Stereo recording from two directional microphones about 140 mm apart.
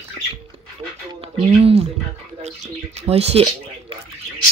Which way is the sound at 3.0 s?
45° right (ahead or behind).